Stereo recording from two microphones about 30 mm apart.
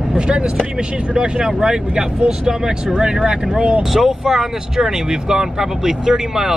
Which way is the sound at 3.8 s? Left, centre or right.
Centre.